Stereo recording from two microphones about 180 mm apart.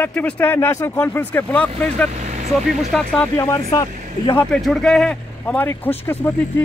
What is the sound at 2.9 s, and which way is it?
Speech, 5° left (ahead or behind).